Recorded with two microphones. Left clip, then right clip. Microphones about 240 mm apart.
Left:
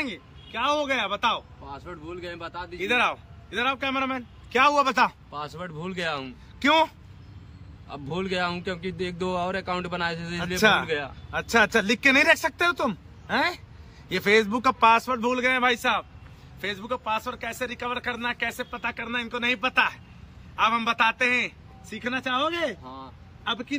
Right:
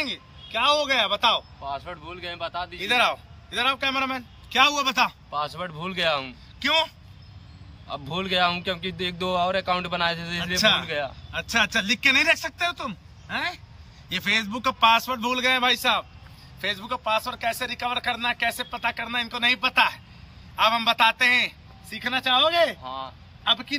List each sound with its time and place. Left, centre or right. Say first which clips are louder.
0.0 s speech: right 3 dB; centre
5.3 s speech: right 6 dB; centre
6.6 s speech: left 2 dB; left
7.9 s speech: right 3 dB; centre
10.4 s speech: left 1 dB; left
10.9 s speech: right 1 dB; centre
11.3 s speech: left 2 dB; left; by 23.8 s centre